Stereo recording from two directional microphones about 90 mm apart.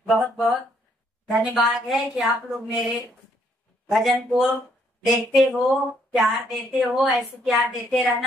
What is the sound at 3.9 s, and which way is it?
A woman's voice, centre (ahead or behind).